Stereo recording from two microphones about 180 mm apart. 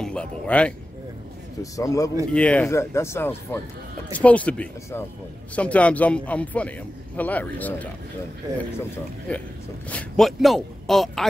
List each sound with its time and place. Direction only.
0.0 s speech: 5° left (ahead or behind)
1.6 s speech: 20° left (ahead or behind)
2.3 s speech: 5° left (ahead or behind)
9.3 s speech: 5° left (ahead or behind)